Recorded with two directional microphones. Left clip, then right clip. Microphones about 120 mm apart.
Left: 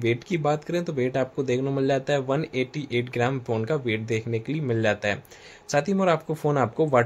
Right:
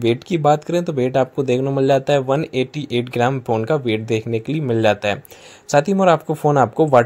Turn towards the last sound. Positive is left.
turn(degrees=-40)  # may be behind; listen again after turning